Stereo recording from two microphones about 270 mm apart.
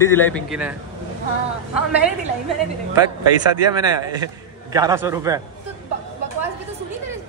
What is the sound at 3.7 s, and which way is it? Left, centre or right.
A man's voice, centre.